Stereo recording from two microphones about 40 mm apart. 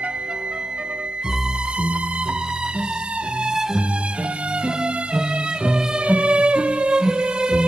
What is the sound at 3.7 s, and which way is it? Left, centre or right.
Music, right.